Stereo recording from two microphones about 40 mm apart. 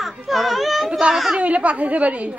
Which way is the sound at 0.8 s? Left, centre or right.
Right.